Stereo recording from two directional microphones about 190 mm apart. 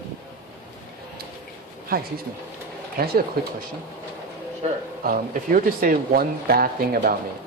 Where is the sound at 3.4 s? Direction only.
55° right (ahead or behind).